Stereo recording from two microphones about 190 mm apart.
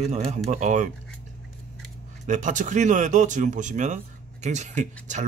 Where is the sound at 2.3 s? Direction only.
40° right (ahead or behind).